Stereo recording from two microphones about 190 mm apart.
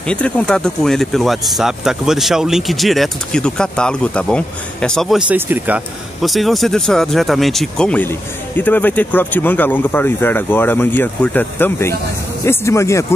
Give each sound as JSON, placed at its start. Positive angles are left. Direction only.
{"t": 0.1, "sound": "speech", "side_deg": 5}